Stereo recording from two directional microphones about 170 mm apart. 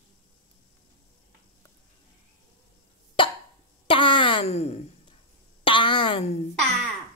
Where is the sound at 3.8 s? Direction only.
30° left (ahead or behind).